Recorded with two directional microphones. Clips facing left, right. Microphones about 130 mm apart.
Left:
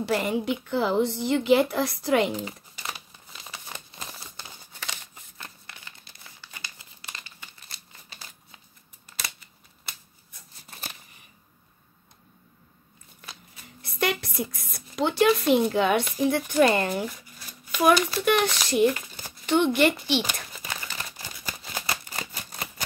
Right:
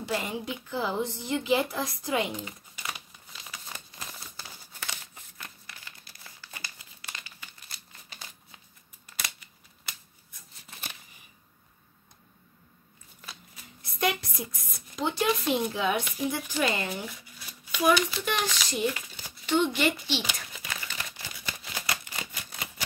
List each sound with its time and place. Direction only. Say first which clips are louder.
0.0 s a woman's voice: left 6 dB; 65° left (ahead or behind)
2.3 s crumpling: left 5 dB; 35° left (ahead or behind)
7.1 s crumpling: even; 35° left (ahead or behind)
13.9 s a sound: left 2 dB; 70° left (ahead or behind)
16.3 s a child's voice: left 9 dB; 55° left (ahead or behind)
18.1 s speech: left 7 dB; 60° left (ahead or behind)
20.6 s camera: left 2 dB; 35° left (ahead or behind)
21.8 s typewriter: left 1 dB; 35° left (ahead or behind)